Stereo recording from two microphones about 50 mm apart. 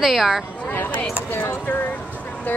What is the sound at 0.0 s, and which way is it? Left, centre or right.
Speech, centre.